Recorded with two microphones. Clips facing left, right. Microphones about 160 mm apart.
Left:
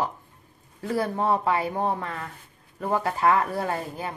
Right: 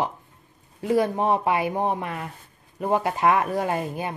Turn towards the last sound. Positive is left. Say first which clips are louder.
# right 3 dB
turn(degrees=-15)  # may be behind; listen again after turning